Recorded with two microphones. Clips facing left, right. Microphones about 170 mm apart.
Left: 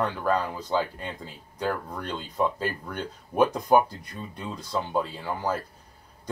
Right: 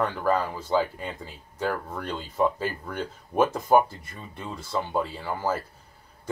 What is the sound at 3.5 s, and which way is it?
Speech, 5° right (ahead or behind).